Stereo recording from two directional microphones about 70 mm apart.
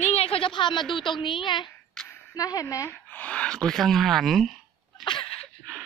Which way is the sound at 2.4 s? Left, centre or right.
Left.